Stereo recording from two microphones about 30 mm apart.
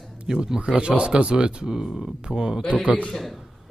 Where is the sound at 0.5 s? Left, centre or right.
Right.